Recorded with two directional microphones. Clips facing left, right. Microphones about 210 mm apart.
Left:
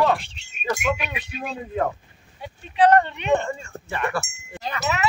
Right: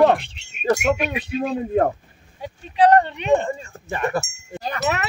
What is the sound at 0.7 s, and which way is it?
Speech, 45° right (ahead or behind).